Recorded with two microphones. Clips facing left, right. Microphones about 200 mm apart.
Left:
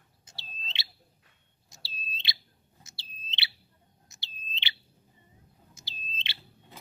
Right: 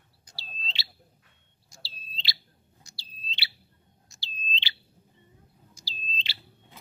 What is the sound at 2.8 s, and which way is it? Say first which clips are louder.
Bird: right 2 dB; 25° left (ahead or behind).